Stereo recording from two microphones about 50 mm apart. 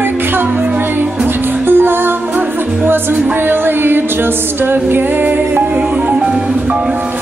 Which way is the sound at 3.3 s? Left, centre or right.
Right.